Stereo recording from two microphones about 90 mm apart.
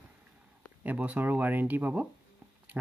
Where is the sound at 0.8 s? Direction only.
20° right (ahead or behind).